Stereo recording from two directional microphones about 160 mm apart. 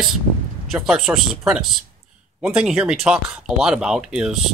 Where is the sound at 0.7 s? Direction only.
Centre (ahead or behind).